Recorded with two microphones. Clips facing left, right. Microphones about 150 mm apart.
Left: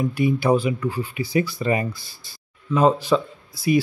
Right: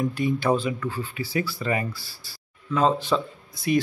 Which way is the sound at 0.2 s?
10° left (ahead or behind).